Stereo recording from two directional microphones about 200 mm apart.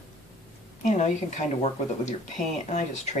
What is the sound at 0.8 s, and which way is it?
Speech, 35° left (ahead or behind).